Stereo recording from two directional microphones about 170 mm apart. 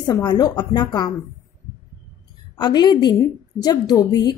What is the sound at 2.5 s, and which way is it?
A woman's voice, 25° left (ahead or behind).